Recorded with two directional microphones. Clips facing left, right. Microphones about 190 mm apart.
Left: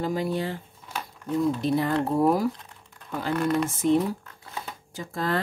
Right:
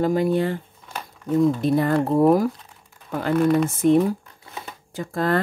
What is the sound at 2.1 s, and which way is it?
Speech, 50° right (ahead or behind).